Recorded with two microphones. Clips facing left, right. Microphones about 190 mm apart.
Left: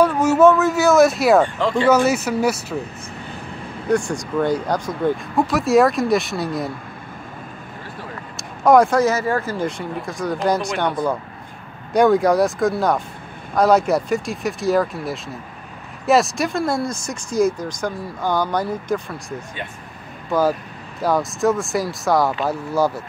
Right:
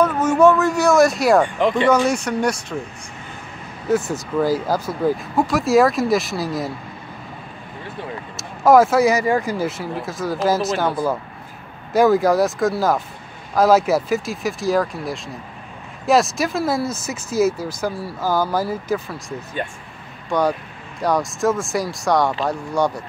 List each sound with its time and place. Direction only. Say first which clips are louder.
0.0 s speech: left 1 dB; 10° left (ahead or behind)
1.4 s speech: right 1 dB; 20° right (ahead or behind)
2.0 s speech: left 1 dB; 5° left (ahead or behind)
3.9 s speech: even; 5° right (ahead or behind)
8.4 s speech: right 1 dB; centre (ahead or behind)
9.7 s speech: even; 5° right (ahead or behind)